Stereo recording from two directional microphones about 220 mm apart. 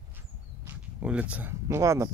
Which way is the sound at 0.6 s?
5° right (ahead or behind).